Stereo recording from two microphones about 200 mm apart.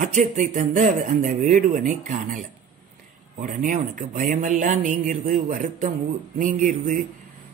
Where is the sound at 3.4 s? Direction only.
40° right (ahead or behind).